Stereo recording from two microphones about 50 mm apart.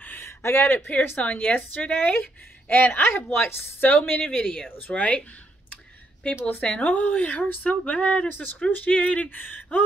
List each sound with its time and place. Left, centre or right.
0.2 s a sound: left
0.7 s speech: left
2.7 s a woman's voice: left
4.2 s speech: centre
4.6 s speech: left
6.2 s speech: left
6.9 s speech: left
7.8 s speech: left
8.3 s speech: left
9.5 s speech: left